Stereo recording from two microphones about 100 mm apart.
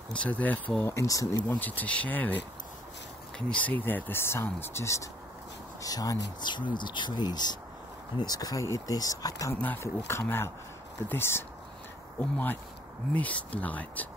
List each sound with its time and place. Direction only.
0.1 s speech: 15° left (ahead or behind)
0.8 s speech: 30° left (ahead or behind)
1.6 s speech: 15° left (ahead or behind); by 9.6 s 35° left (ahead or behind)
9.6 s speech: 20° left (ahead or behind)